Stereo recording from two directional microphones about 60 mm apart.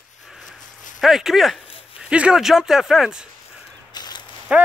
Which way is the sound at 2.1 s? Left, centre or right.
Centre.